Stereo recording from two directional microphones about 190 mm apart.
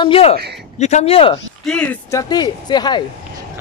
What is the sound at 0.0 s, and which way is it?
Speech, 30° left (ahead or behind).